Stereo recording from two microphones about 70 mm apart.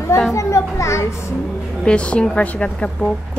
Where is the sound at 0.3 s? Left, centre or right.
Left.